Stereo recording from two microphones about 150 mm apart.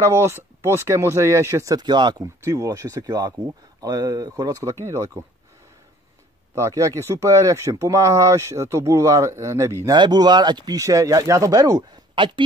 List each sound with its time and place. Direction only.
0.0 s speech: 15° right (ahead or behind)
6.5 s speech: 20° right (ahead or behind)
9.9 s speech: 30° right (ahead or behind)